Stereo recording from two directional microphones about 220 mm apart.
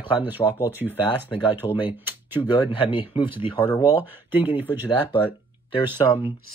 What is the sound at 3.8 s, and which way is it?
Speech, 10° right (ahead or behind).